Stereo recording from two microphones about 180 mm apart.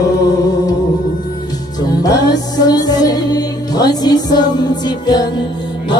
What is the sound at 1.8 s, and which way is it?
Music, 20° left (ahead or behind).